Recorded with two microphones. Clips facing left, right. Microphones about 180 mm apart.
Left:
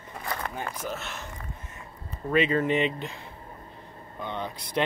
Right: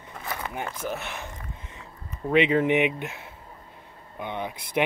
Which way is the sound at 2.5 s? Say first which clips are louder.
Right 3 dB; 15° right (ahead or behind).